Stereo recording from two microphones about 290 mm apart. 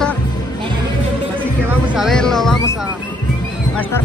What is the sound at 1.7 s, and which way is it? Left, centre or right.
Speech, centre.